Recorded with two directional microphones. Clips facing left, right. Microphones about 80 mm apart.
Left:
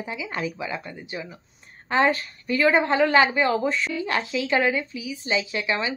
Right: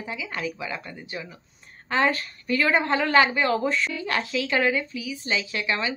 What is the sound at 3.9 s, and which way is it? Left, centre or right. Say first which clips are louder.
Speech: left 1 dB; left.